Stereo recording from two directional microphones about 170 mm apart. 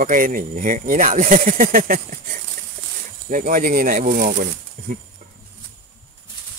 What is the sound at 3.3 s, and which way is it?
Speech, 50° right (ahead or behind).